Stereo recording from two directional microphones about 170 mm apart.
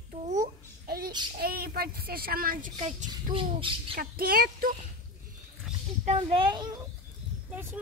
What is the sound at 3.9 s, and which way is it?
Speech, 60° right (ahead or behind).